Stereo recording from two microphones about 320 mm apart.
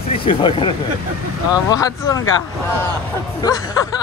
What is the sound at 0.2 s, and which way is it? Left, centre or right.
Speech, centre.